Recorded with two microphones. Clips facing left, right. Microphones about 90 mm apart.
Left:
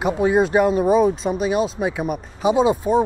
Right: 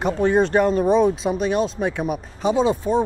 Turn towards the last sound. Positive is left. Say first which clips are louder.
# left 2 dB
turn(degrees=10)  # may be behind; listen again after turning